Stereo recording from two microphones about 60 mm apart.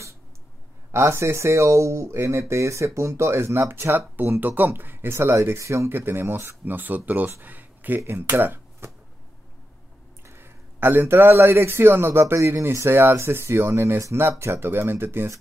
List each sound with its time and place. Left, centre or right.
0.9 s speech: right
5.9 s speech: right
7.4 s a sound: right
8.2 s speech: right
10.2 s speech: right
12.7 s speech: right